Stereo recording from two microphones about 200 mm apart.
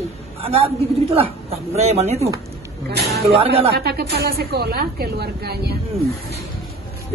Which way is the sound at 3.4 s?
30° right (ahead or behind).